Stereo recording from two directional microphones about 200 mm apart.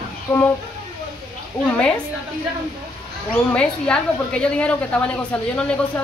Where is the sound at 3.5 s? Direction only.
5° left (ahead or behind).